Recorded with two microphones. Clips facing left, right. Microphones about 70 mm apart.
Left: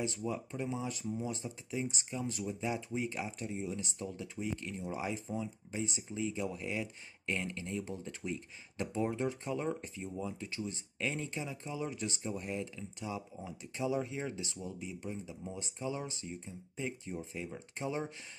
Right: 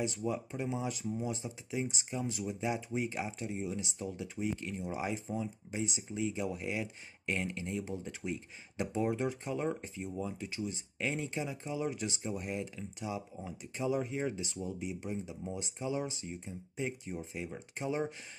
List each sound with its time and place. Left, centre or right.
0.0 s speech: centre
4.8 s speech: centre
14.7 s speech: centre